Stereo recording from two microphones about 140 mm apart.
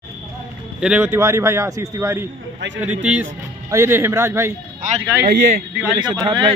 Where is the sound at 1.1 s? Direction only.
20° right (ahead or behind).